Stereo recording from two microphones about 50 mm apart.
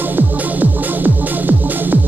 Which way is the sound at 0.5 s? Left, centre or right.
Right.